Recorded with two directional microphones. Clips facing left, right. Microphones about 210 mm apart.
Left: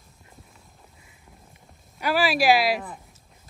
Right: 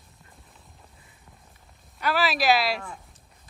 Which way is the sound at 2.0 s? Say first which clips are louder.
Left 3 dB; 10° left (ahead or behind).